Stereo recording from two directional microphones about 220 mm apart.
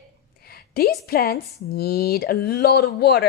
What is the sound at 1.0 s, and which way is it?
A woman's voice, 45° left (ahead or behind).